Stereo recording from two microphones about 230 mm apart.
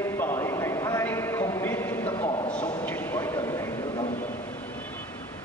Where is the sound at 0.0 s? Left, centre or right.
Centre.